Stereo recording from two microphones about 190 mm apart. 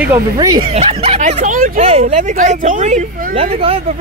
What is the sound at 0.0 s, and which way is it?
Speech, 15° right (ahead or behind).